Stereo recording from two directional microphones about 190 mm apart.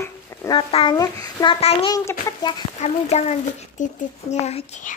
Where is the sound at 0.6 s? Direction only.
30° left (ahead or behind).